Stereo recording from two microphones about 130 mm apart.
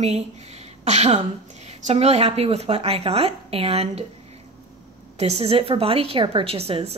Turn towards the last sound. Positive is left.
turn(degrees=-45)  # may be behind; listen again after turning